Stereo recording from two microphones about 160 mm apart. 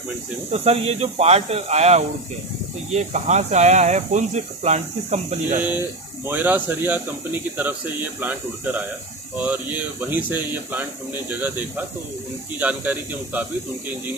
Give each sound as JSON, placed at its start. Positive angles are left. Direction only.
{"t": 0.5, "sound": "speech", "side_deg": -40}
{"t": 6.2, "sound": "speech", "side_deg": -10}